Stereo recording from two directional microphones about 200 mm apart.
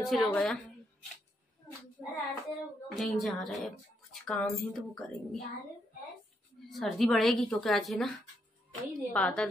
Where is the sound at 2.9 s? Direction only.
Centre (ahead or behind).